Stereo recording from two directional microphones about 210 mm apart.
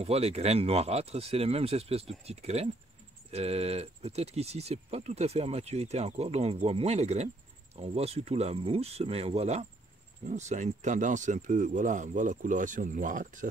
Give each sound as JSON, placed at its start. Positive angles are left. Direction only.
{"t": 0.0, "sound": "speech", "side_deg": -30}